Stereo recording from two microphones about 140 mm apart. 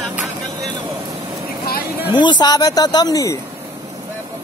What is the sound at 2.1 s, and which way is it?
Speech, 35° left (ahead or behind).